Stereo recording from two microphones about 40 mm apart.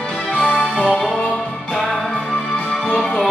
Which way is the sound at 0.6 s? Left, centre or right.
Centre.